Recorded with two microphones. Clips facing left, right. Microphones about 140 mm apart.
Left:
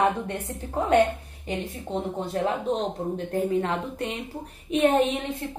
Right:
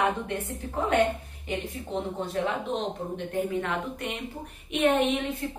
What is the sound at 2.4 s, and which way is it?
A woman's voice, 40° left (ahead or behind).